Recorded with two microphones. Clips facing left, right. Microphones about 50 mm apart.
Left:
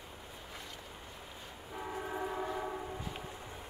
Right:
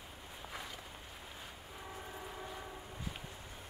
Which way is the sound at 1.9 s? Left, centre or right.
Left.